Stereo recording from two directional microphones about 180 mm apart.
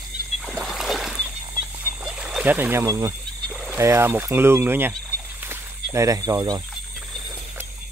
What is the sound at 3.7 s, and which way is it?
Speech, 15° right (ahead or behind).